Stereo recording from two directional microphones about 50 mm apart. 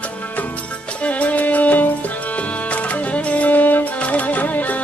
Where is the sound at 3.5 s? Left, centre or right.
Left.